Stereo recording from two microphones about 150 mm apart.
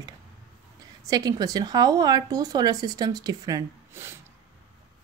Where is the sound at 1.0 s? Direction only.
25° right (ahead or behind).